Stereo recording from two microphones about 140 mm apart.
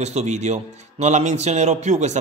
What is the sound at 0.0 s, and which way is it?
A man's voice, 50° right (ahead or behind).